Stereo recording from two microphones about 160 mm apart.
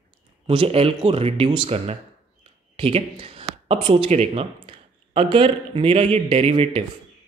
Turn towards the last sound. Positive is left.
turn(degrees=-35)  # may be behind; listen again after turning